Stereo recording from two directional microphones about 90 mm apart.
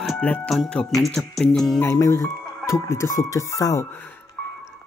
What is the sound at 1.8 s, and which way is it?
Speech, 30° left (ahead or behind).